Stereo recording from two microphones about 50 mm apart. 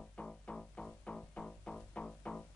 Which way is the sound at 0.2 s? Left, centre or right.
Left.